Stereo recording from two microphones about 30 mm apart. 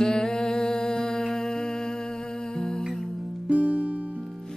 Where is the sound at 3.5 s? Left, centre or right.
Right.